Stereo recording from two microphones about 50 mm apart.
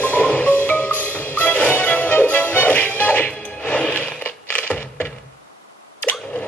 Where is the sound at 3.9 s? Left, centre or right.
Left.